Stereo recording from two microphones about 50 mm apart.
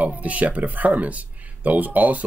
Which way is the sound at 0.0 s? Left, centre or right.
Right.